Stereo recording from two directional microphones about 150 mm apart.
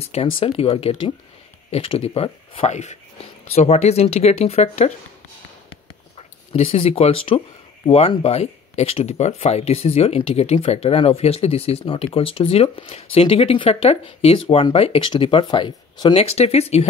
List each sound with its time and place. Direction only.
0.0 s speech: 40° left (ahead or behind)
6.1 s speech: 45° left (ahead or behind)
16.3 s speech: 45° left (ahead or behind)